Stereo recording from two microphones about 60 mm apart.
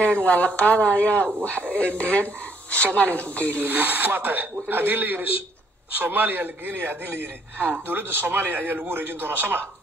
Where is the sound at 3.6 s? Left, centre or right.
Right.